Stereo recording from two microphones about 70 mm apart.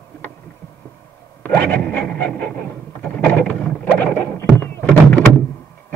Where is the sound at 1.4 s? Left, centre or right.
Left.